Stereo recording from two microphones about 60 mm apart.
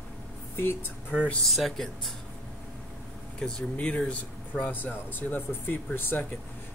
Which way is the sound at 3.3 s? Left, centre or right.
Centre.